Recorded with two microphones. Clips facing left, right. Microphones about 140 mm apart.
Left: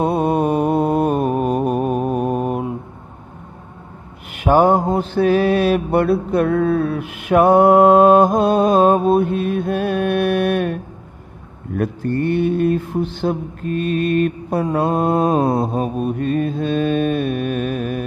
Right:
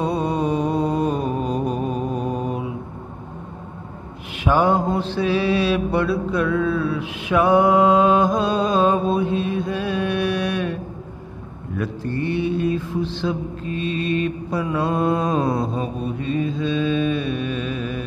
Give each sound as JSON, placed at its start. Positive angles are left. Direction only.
{"t": 0.0, "sound": "mantra", "side_deg": 55}
{"t": 4.5, "sound": "mantra", "side_deg": 45}